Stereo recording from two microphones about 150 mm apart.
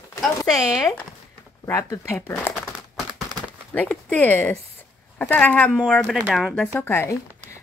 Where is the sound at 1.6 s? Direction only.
20° left (ahead or behind).